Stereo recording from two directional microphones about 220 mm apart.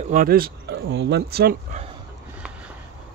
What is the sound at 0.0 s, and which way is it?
Speech, 40° right (ahead or behind).